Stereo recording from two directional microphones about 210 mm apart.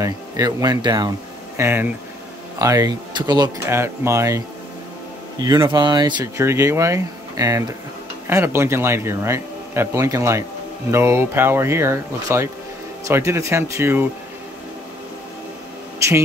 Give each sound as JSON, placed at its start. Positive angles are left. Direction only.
{"t": 0.0, "sound": "speech", "side_deg": -15}
{"t": 5.4, "sound": "speech", "side_deg": -20}
{"t": 16.0, "sound": "a sound", "side_deg": -15}